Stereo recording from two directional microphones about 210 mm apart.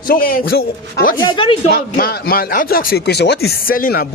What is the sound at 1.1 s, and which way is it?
Speech, 20° left (ahead or behind).